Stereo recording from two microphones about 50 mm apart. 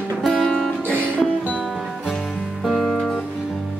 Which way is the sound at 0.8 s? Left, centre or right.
Left.